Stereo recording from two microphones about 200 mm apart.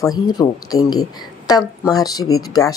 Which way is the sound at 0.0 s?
20° left (ahead or behind).